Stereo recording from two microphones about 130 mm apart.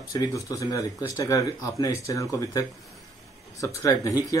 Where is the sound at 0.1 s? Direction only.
25° left (ahead or behind).